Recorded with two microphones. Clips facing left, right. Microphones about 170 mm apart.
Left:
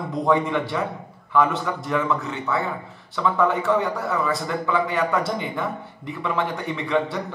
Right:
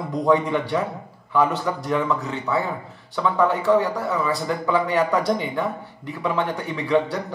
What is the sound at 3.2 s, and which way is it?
A man's voice, centre (ahead or behind).